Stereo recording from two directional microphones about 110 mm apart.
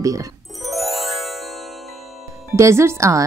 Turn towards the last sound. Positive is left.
turn(degrees=-30)  # may be behind; listen again after turning